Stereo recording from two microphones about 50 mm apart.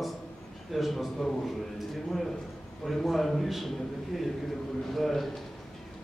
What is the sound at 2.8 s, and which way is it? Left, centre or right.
A man's voice, centre.